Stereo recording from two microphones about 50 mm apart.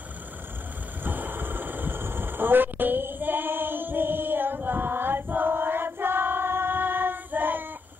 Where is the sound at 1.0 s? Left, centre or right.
Right.